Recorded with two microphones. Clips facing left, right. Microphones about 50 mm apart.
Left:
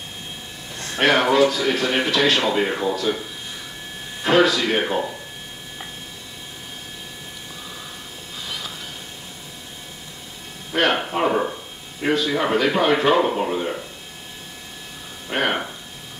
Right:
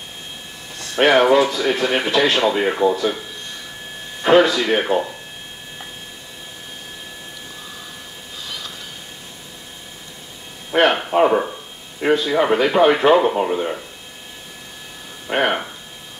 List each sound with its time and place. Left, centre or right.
0.9 s a man's voice: centre
2.0 s speech: right
2.4 s a man's voice: centre
4.2 s a man's voice: centre
4.7 s a man's voice: centre
8.5 s a sound: centre
10.7 s a man's voice: centre
15.2 s a man's voice: centre